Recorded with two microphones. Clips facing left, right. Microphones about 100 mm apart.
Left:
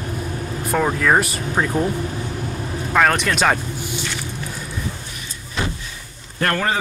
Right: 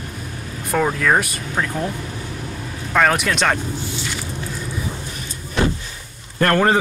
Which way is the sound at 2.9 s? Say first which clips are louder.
Even; centre (ahead or behind).